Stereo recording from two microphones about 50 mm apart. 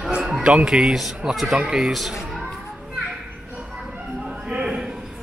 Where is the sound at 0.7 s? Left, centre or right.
Centre.